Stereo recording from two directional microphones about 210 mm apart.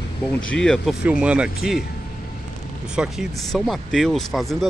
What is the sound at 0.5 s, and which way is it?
Speech, centre (ahead or behind).